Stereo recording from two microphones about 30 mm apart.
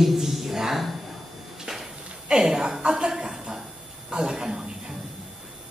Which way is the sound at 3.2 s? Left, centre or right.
Right.